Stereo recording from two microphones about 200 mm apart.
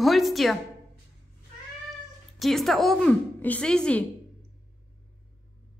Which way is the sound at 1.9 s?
Centre (ahead or behind).